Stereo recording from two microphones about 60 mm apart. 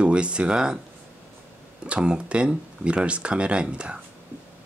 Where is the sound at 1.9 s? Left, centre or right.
Centre.